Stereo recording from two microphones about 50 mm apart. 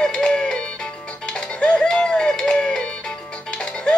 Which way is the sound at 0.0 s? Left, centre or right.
Centre.